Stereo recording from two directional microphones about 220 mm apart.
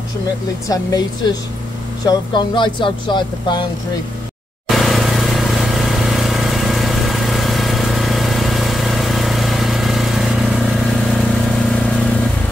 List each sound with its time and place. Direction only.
2.0 s speech: 20° left (ahead or behind)
4.6 s vehicle: centre (ahead or behind)